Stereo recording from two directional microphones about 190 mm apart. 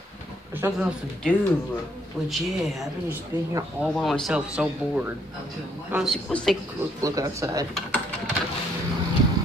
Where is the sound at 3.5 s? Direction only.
15° right (ahead or behind).